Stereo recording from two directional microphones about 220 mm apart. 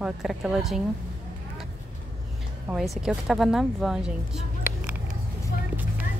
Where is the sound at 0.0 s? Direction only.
Centre (ahead or behind).